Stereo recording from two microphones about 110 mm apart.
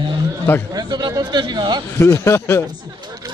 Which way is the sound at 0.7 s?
40° right (ahead or behind).